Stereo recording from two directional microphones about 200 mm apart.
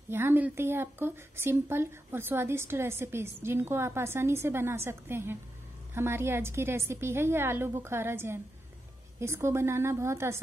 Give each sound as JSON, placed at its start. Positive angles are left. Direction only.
{"t": 0.1, "sound": "speech", "side_deg": -10}